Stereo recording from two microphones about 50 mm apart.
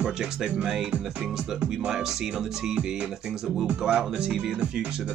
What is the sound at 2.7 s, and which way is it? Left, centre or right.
Music, right.